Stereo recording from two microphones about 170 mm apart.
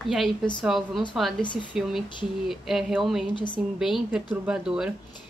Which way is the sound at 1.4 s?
30° left (ahead or behind).